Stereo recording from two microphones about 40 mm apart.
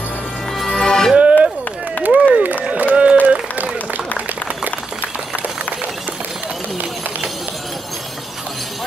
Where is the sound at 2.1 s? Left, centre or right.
Right.